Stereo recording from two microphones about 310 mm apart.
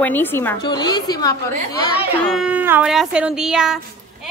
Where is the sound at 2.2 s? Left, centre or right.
Centre.